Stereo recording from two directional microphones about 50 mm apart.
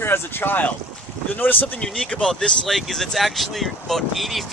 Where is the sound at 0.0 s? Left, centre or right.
Left.